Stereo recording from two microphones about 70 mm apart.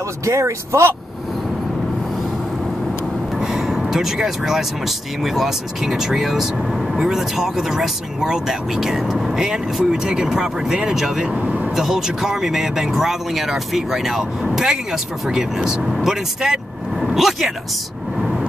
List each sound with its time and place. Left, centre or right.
0.2 s speech: right
3.3 s speech: centre
11.4 s vehicle: centre
11.7 s speech: centre
17.0 s vehicle: centre